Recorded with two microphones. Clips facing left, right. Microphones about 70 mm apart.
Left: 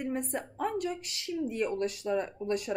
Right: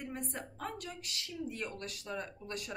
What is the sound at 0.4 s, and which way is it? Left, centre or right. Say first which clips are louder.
Speech: left 10 dB; left.